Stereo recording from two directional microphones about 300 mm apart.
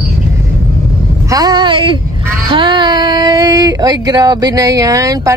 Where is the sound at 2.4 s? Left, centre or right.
Centre.